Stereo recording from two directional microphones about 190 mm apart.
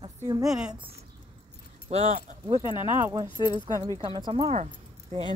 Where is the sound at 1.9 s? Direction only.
35° right (ahead or behind).